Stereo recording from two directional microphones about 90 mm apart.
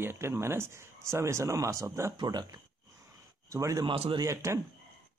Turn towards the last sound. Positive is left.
turn(degrees=-30)  # may be behind; listen again after turning